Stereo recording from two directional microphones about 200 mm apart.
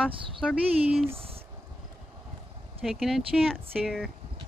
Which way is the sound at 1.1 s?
30° right (ahead or behind).